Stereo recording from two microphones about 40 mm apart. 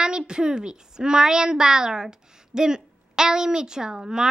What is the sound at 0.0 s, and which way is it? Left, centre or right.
A woman's voice, right.